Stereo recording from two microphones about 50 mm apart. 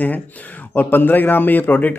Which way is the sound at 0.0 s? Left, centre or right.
Left.